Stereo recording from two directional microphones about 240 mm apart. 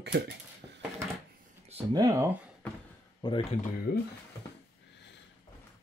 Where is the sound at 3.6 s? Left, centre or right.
Left.